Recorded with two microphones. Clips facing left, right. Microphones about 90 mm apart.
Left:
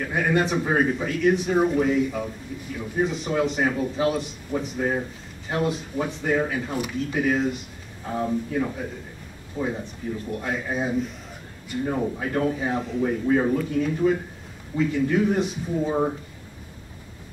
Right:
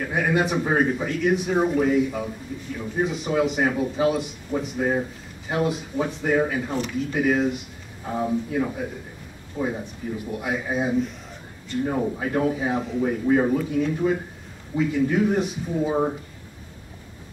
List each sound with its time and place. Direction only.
0.0 s a man's voice: 5° right (ahead or behind)
6.7 s a man's voice: 5° left (ahead or behind)